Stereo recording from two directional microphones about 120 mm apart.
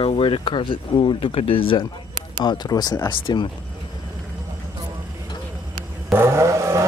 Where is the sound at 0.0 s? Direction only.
50° left (ahead or behind).